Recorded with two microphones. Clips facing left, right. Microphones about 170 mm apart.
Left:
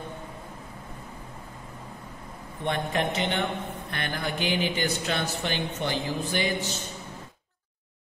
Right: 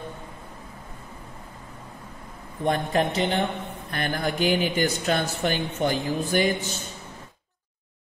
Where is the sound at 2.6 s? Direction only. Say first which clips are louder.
Right 4 dB; 40° right (ahead or behind).